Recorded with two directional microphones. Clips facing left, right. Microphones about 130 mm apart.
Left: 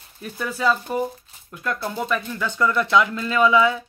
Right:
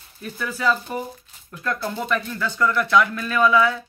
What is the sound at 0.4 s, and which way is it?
Speech, 20° left (ahead or behind).